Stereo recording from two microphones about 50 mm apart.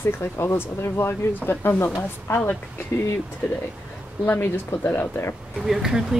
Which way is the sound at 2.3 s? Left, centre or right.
Left.